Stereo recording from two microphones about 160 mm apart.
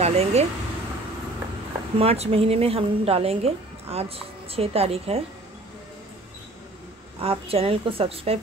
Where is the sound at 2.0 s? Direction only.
40° right (ahead or behind).